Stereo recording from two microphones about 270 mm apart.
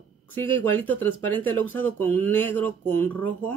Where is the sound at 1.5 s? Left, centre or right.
Right.